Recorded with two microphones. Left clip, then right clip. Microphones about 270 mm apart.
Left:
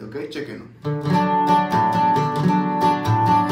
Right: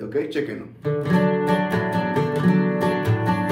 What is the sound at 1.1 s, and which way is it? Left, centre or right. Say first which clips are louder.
Music: left 6 dB; centre.